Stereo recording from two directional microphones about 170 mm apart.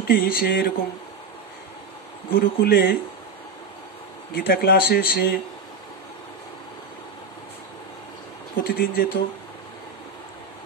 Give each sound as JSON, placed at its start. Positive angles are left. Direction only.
{"t": 0.1, "sound": "speech", "side_deg": 60}
{"t": 2.3, "sound": "speech", "side_deg": 60}
{"t": 4.4, "sound": "speech", "side_deg": 70}
{"t": 8.6, "sound": "speech", "side_deg": 60}